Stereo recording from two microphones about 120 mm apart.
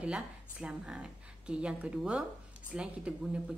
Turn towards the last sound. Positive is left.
turn(degrees=-10)  # may be behind; listen again after turning